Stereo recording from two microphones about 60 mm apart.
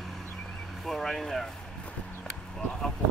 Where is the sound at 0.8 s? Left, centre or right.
Centre.